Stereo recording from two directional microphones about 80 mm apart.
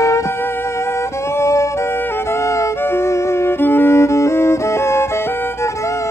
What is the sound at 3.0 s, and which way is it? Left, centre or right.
Music, left.